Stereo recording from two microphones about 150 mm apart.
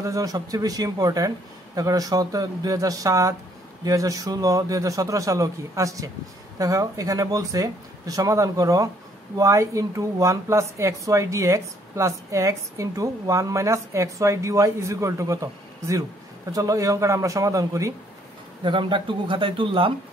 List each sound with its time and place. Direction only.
0.0 s speech: 25° right (ahead or behind)
18.6 s speech: 35° right (ahead or behind)